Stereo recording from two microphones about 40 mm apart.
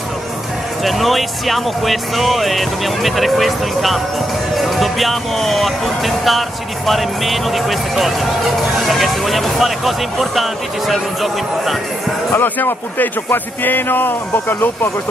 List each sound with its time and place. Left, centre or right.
0.8 s speech: centre
12.4 s speech: left